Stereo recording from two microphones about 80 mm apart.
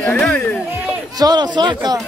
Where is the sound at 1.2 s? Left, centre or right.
Right.